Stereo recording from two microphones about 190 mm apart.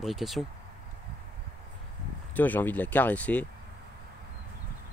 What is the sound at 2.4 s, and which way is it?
Speech, 10° left (ahead or behind).